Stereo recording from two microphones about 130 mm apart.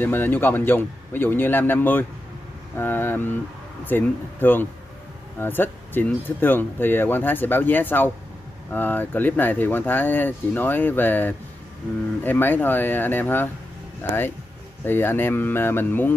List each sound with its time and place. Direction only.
0.0 s speech: 15° left (ahead or behind)
14.9 s speech: 15° left (ahead or behind)